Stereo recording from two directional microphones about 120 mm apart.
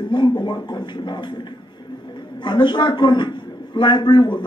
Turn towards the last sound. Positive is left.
turn(degrees=40)  # may be behind; listen again after turning